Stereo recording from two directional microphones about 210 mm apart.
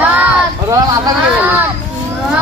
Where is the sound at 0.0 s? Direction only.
10° right (ahead or behind).